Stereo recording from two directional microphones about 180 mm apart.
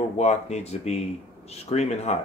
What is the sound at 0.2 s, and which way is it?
Speech, 40° left (ahead or behind).